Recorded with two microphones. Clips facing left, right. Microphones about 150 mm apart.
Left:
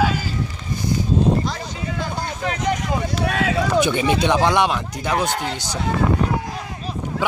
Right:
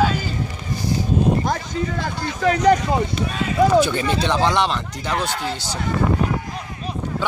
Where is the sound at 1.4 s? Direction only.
50° right (ahead or behind).